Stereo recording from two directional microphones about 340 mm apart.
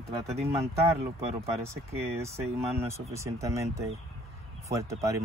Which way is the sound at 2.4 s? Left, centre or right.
Centre.